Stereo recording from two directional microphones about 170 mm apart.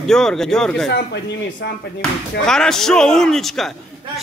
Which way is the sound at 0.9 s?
75° left (ahead or behind).